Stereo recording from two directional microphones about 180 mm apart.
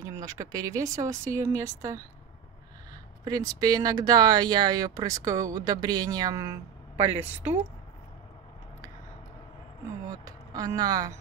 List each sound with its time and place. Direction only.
0.0 s speech: 20° right (ahead or behind)
3.3 s speech: 20° right (ahead or behind)
9.8 s speech: 20° right (ahead or behind)